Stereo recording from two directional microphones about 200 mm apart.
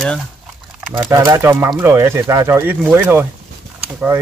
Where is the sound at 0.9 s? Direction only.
15° right (ahead or behind).